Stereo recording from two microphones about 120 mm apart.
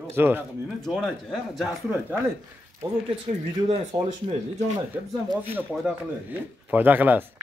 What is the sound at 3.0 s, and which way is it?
Speech, 55° right (ahead or behind).